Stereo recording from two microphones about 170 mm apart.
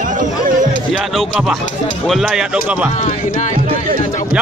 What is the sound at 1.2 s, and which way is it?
Speech, centre (ahead or behind).